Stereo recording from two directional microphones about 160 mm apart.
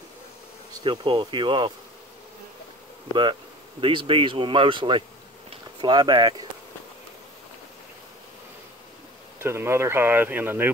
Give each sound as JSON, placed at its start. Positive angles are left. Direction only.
{"t": 0.8, "sound": "speech", "side_deg": -30}
{"t": 3.8, "sound": "speech", "side_deg": -30}
{"t": 9.4, "sound": "speech", "side_deg": -15}